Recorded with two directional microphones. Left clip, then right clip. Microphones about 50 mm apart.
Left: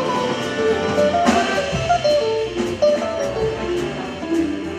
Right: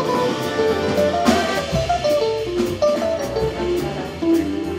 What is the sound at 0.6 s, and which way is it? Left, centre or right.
Music, left.